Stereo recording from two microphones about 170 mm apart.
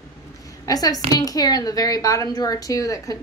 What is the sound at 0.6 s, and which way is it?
A woman's voice, 20° left (ahead or behind).